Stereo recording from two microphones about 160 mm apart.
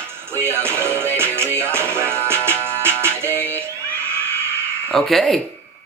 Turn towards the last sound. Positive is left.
turn(degrees=0)  # may be behind; listen again after turning